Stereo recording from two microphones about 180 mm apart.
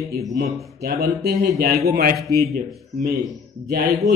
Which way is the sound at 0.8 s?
60° right (ahead or behind).